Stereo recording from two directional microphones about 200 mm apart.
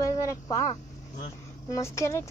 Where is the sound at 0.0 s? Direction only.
15° left (ahead or behind).